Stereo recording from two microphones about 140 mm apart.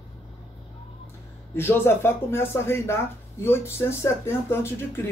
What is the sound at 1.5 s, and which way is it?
Speech, 15° left (ahead or behind).